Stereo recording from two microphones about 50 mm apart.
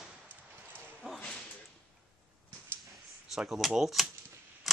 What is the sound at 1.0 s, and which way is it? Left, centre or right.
Whip, centre.